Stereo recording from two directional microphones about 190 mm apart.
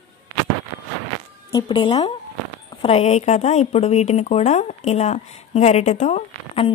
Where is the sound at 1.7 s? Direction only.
25° left (ahead or behind).